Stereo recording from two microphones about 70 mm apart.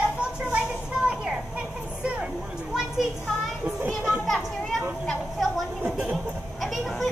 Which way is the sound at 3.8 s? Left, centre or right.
Right.